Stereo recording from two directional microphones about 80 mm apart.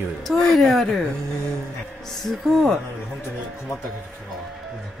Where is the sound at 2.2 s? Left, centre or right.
Centre.